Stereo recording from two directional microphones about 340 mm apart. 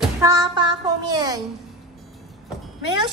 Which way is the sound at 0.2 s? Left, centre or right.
Centre.